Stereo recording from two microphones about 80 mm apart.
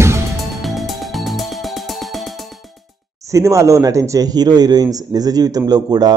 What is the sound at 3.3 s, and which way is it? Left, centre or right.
Speech, right.